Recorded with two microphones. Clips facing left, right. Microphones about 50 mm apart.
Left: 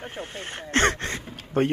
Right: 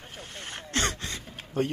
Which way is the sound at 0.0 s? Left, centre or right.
Left.